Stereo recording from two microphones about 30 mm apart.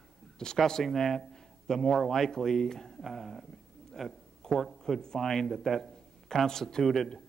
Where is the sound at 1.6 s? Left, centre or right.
Centre.